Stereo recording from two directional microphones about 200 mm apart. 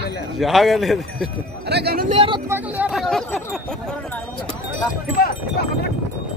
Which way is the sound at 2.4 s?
10° right (ahead or behind).